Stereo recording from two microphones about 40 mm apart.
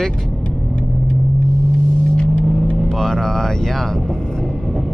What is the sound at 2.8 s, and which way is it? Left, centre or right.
Speech, centre.